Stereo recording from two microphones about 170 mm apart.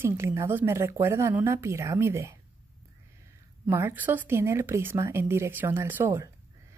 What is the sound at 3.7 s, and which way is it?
Speech, 15° right (ahead or behind).